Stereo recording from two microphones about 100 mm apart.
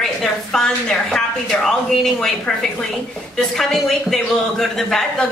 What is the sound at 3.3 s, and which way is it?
A man's voice, 5° left (ahead or behind).